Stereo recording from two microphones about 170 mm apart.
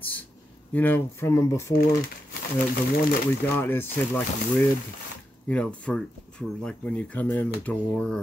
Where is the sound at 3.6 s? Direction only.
10° left (ahead or behind).